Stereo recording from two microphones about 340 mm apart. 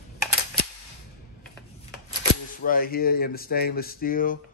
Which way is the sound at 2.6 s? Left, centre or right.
Left.